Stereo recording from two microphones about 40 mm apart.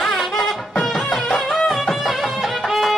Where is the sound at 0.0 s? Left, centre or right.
Centre.